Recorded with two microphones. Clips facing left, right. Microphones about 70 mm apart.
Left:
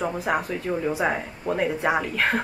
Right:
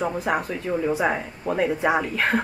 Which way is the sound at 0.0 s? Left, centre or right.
Centre.